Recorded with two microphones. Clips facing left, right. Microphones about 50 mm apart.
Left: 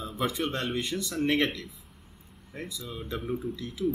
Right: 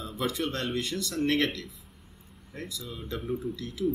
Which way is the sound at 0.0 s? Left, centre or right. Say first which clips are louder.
Left 1 dB; centre.